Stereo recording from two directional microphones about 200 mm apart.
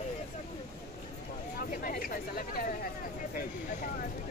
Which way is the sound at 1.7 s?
40° left (ahead or behind).